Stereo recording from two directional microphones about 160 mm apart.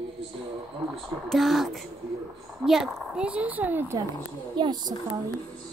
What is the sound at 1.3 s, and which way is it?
A woman's voice, centre (ahead or behind).